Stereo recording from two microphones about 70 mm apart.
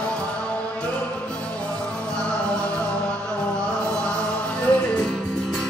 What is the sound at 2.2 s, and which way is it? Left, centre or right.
Music, centre.